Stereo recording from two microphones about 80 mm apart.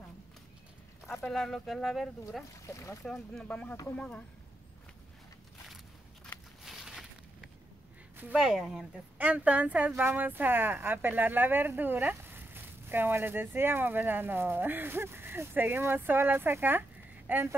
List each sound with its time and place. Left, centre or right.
1.2 s speech: centre
2.6 s speech: left
3.4 s speech: centre
6.6 s a sound: centre
8.4 s speech: centre
9.2 s speech: centre